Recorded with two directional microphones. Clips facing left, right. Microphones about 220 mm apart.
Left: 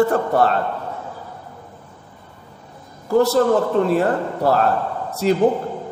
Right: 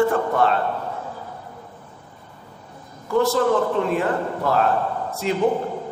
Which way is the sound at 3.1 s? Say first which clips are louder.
Left 3 dB; 40° left (ahead or behind).